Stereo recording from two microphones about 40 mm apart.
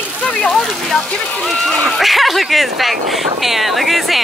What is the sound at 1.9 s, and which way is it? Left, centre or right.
Speech, centre.